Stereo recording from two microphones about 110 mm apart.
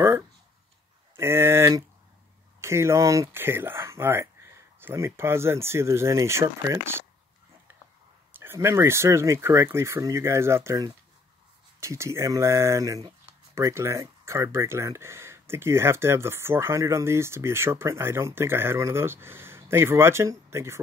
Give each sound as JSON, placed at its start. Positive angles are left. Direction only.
{"t": 1.1, "sound": "speech", "side_deg": -25}
{"t": 8.3, "sound": "speech", "side_deg": -25}